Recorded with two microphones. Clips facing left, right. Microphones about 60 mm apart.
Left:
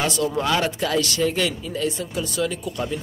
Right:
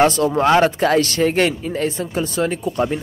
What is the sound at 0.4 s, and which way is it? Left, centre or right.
Speech, right.